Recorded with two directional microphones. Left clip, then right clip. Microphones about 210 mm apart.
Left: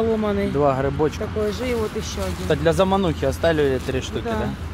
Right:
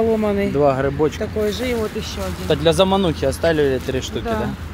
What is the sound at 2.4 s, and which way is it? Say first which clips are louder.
Speech: right 3 dB; 10° right (ahead or behind).